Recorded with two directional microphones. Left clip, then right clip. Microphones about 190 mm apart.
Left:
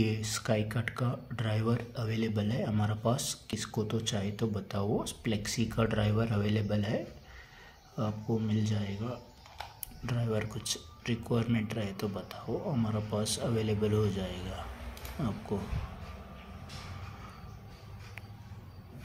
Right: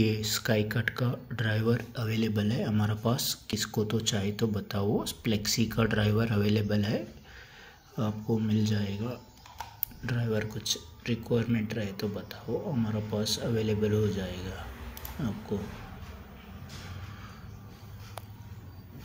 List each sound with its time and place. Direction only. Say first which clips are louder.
0.0 s speech: right 4 dB; centre (ahead or behind)